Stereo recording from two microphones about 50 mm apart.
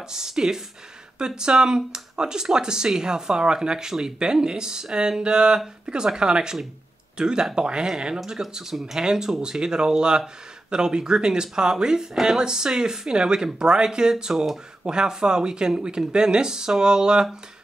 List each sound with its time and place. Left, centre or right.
0.1 s speech: centre